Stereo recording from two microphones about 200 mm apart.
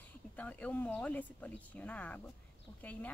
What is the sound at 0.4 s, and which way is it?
Speech, 10° left (ahead or behind).